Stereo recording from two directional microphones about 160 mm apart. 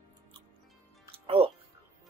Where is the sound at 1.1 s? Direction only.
35° right (ahead or behind).